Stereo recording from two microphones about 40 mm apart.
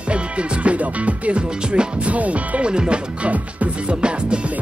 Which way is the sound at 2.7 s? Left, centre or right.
Right.